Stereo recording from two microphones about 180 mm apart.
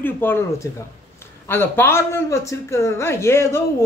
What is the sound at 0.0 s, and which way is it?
Speech, 10° left (ahead or behind).